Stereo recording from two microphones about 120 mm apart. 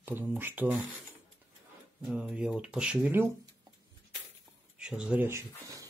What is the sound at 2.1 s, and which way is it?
Speech, 5° right (ahead or behind).